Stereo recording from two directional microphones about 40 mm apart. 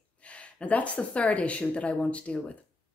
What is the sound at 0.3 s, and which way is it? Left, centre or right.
Speech, left.